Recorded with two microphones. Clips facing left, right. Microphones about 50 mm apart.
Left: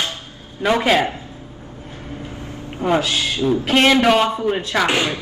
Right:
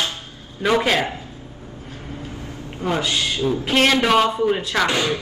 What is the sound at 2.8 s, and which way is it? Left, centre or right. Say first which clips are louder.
Speech: left 5 dB; left.